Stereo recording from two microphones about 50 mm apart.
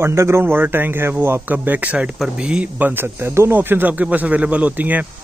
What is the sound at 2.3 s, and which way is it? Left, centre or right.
Speech, centre.